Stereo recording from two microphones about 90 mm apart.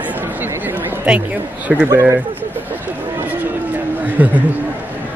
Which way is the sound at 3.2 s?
20° right (ahead or behind).